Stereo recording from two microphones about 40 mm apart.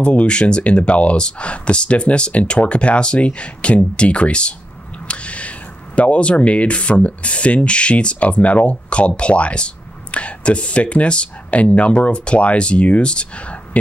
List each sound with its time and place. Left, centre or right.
0.0 s speech: left